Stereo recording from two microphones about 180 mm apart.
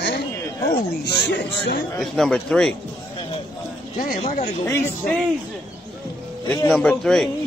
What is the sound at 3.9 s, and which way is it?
Speech, 55° left (ahead or behind).